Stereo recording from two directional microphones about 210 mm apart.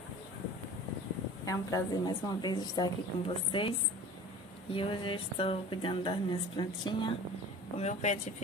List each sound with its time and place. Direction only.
1.4 s a woman's voice: 15° left (ahead or behind)
4.7 s a woman's voice: 25° left (ahead or behind)